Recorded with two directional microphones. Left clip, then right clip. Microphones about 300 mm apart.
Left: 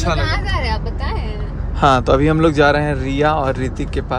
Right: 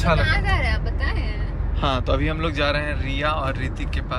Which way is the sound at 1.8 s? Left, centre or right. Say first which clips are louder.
Left 10 dB; left.